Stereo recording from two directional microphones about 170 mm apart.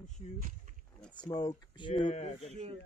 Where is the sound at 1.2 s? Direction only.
25° left (ahead or behind).